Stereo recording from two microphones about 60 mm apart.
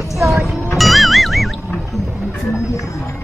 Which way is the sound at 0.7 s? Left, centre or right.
Centre.